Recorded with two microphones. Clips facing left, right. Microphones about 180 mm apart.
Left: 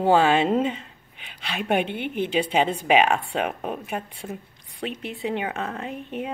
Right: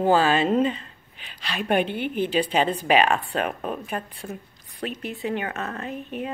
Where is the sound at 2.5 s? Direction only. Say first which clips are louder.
Left 2 dB; 10° left (ahead or behind).